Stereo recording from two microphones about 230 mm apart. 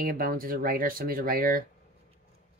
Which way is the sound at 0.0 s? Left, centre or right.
Right.